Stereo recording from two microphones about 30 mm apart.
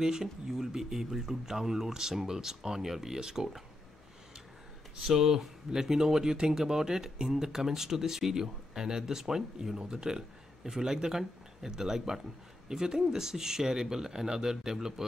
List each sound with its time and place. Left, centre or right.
0.0 s speech: centre
5.0 s speech: centre